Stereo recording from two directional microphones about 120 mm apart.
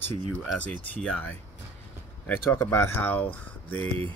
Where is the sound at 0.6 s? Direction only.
10° left (ahead or behind).